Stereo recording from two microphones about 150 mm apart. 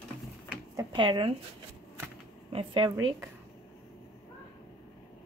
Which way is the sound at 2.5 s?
35° right (ahead or behind).